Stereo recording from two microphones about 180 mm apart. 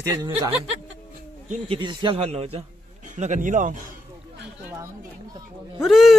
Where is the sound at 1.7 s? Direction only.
25° right (ahead or behind); by 3.7 s 45° right (ahead or behind).